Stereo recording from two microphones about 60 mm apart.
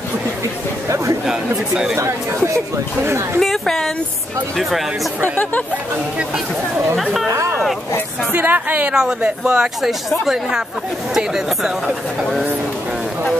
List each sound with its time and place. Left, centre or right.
0.8 s speech: right
3.3 s a woman's voice: centre
7.2 s speech: right
8.3 s speech: right
8.9 s speech: centre